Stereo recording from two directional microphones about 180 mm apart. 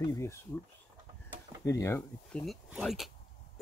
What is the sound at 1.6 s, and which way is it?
Speech, 15° left (ahead or behind).